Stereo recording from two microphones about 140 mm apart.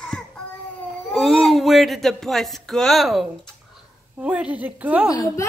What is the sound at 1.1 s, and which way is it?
Speech, centre (ahead or behind).